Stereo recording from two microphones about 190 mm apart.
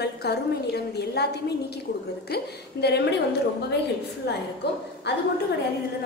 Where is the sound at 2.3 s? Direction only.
60° left (ahead or behind).